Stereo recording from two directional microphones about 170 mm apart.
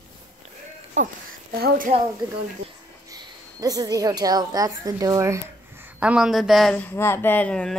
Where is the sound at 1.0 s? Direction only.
45° right (ahead or behind).